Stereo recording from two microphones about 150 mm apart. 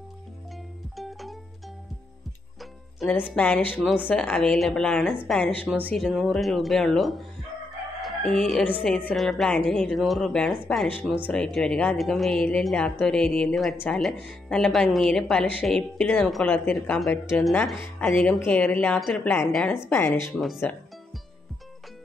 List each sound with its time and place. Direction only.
0.9 s music: centre (ahead or behind)
2.6 s music: centre (ahead or behind)
3.3 s speech: 10° left (ahead or behind)
3.8 s speech: 10° right (ahead or behind)
4.1 s a woman's voice: 5° left (ahead or behind)
20.3 s a woman's voice: centre (ahead or behind)